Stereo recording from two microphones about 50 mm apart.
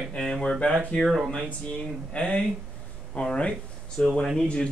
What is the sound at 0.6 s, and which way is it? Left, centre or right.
Speech, centre.